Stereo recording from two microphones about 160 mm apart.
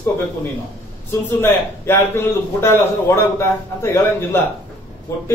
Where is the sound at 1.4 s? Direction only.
15° left (ahead or behind).